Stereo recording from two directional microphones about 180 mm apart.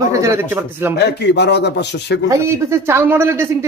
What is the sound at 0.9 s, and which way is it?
A man's voice, 70° left (ahead or behind).